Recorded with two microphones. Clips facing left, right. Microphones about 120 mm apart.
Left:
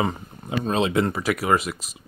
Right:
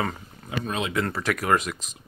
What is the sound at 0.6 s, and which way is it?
Speech, 30° left (ahead or behind).